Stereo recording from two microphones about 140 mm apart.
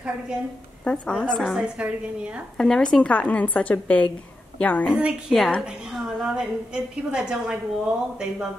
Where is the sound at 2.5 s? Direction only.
5° left (ahead or behind).